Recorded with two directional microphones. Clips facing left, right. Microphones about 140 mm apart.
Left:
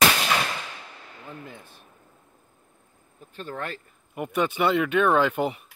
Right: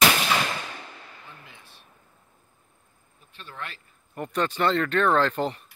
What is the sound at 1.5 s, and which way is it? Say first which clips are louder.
Speech: left 8 dB; 50° left (ahead or behind).